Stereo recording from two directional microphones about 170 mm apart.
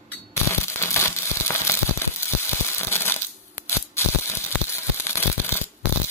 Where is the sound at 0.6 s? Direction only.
15° left (ahead or behind).